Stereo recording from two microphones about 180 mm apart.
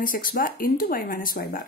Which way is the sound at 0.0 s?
50° left (ahead or behind).